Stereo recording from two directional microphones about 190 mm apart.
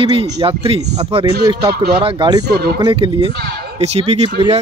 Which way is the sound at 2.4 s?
60° right (ahead or behind).